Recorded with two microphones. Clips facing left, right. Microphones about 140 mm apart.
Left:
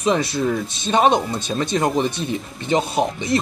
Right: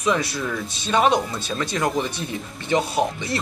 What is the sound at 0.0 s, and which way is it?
Speech, 25° left (ahead or behind).